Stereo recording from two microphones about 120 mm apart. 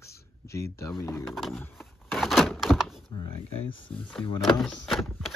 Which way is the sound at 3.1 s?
45° left (ahead or behind).